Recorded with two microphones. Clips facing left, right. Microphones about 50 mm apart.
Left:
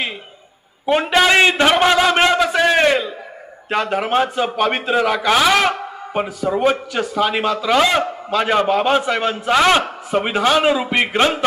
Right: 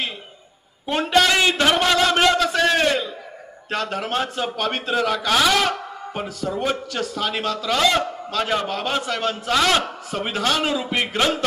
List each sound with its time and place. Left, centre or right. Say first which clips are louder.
0.8 s speech: left 4 dB; left
2.1 s a sound: left 3 dB; left
3.7 s speech: left 6 dB; centre